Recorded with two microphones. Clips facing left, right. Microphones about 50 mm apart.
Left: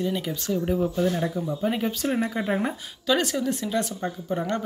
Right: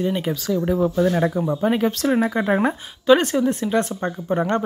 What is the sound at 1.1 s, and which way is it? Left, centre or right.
Speech, right.